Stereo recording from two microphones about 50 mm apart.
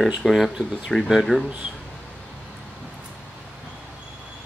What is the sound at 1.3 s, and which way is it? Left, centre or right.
Speech, centre.